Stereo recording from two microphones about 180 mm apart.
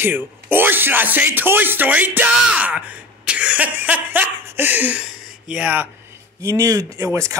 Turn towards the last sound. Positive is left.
turn(degrees=-15)  # may be behind; listen again after turning